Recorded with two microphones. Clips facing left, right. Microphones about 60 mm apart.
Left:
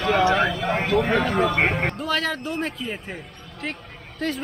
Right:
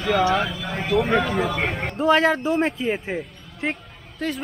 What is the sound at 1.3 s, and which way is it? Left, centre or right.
Speech, left.